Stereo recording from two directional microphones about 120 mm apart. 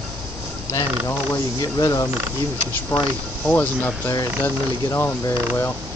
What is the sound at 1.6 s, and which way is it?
Speech, 30° left (ahead or behind).